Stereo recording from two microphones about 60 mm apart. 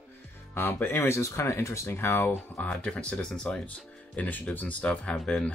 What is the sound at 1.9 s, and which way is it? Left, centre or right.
Speech, left.